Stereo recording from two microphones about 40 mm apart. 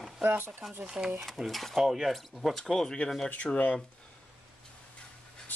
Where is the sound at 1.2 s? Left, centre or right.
Centre.